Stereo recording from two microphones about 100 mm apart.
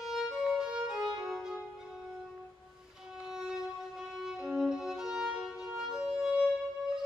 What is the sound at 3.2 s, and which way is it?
Violin, 5° right (ahead or behind).